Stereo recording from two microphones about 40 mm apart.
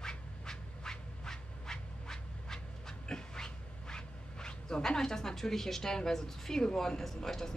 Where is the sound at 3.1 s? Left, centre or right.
Centre.